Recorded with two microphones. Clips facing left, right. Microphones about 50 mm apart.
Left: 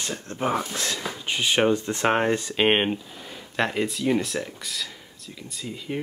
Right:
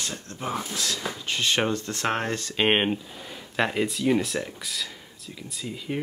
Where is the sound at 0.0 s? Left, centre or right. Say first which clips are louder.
Left 5 dB; left.